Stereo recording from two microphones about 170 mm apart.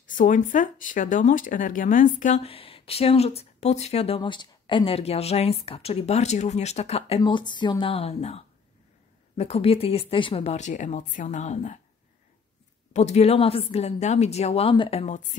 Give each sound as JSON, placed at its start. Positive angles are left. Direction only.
{"t": 0.0, "sound": "speech", "side_deg": 50}
{"t": 7.2, "sound": "a woman's voice", "side_deg": 25}
{"t": 12.9, "sound": "speech", "side_deg": 40}